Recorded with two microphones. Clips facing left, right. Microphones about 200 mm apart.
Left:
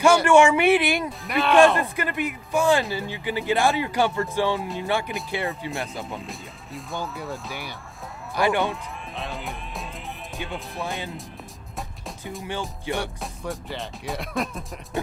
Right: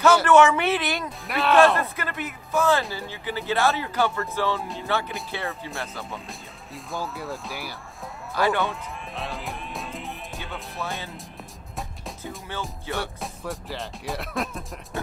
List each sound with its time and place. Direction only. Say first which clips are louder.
0.0 s speech: left 1 dB; 10° left (ahead or behind)
1.2 s speech: even; centre (ahead or behind)
1.8 s speech: left 4 dB; 15° left (ahead or behind)
6.1 s speech: left 3 dB; centre (ahead or behind)
8.4 s speech: left 1 dB; 15° left (ahead or behind)
8.6 s music: left 1 dB; centre (ahead or behind)
12.4 s speech: left 4 dB; 15° left (ahead or behind)
13.0 s speech: left 1 dB; centre (ahead or behind)